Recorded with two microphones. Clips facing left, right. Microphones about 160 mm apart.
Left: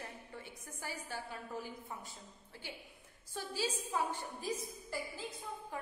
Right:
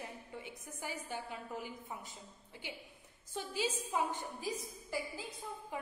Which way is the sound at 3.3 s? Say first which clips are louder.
Right 1 dB; 20° right (ahead or behind).